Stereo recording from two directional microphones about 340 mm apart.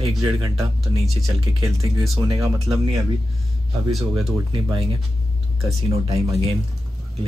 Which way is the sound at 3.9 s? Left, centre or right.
Centre.